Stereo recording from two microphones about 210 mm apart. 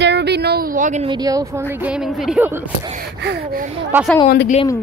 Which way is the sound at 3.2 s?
50° right (ahead or behind).